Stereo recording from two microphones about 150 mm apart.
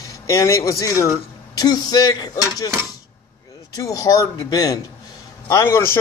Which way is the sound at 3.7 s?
25° left (ahead or behind).